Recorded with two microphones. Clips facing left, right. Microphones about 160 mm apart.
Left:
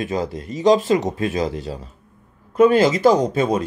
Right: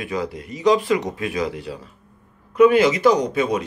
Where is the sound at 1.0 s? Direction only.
40° left (ahead or behind).